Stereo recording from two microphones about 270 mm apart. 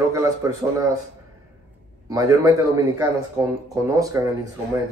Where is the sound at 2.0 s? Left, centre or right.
Centre.